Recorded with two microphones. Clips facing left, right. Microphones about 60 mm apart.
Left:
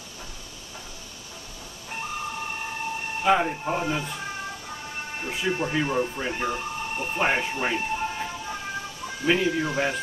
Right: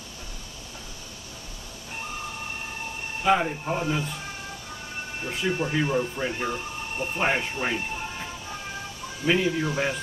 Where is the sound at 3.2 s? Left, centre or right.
Centre.